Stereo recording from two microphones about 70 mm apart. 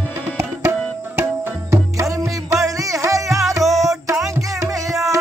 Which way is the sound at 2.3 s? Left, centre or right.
Right.